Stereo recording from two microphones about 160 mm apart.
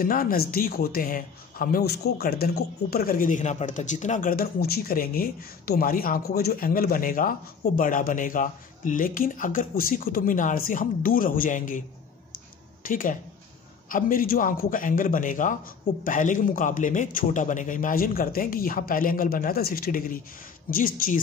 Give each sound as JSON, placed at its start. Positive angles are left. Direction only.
{"t": 0.0, "sound": "speech", "side_deg": 65}
{"t": 12.8, "sound": "speech", "side_deg": 60}